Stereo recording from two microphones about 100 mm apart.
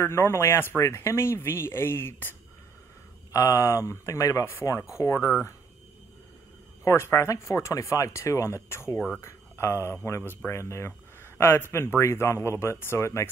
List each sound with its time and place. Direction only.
0.0 s speech: 25° left (ahead or behind)
6.8 s speech: 30° left (ahead or behind)